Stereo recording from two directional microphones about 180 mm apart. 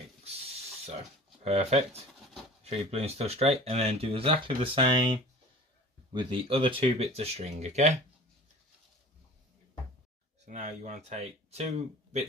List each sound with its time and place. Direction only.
0.9 s speech: 35° right (ahead or behind)
10.4 s speech: 40° right (ahead or behind)